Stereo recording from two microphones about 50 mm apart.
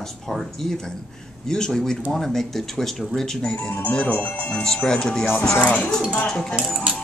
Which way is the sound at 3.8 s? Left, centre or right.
Left.